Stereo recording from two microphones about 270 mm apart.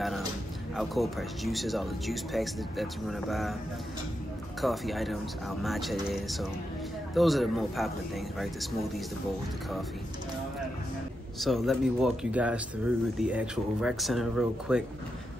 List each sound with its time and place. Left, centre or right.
0.7 s speech: centre
4.6 s speech: centre
11.3 s speech: centre